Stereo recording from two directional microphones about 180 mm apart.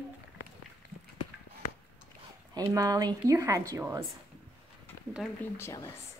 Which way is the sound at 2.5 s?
20° right (ahead or behind).